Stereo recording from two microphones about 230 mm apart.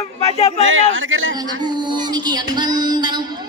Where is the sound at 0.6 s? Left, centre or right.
Right.